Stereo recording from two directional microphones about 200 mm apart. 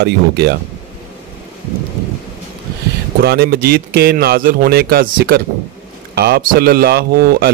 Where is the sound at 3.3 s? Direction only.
50° right (ahead or behind).